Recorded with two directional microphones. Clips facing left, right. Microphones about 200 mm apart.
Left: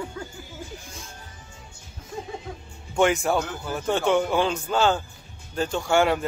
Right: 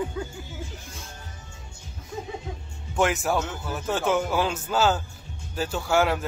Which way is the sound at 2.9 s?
Centre (ahead or behind).